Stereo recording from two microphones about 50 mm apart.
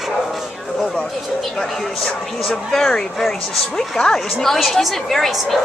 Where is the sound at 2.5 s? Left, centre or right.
Centre.